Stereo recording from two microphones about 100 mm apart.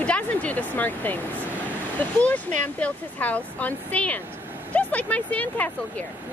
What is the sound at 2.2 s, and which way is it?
Speech, 15° left (ahead or behind).